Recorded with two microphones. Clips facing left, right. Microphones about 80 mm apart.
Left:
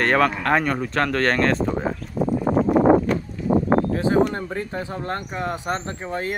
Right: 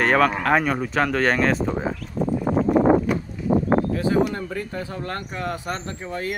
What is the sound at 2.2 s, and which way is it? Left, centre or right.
Horse, centre.